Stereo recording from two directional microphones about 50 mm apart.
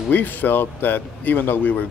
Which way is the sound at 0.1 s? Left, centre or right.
Left.